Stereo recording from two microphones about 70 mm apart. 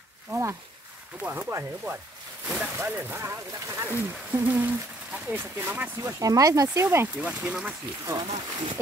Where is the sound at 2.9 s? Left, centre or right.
Right.